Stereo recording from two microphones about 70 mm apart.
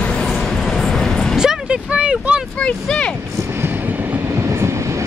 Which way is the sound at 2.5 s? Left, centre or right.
Centre.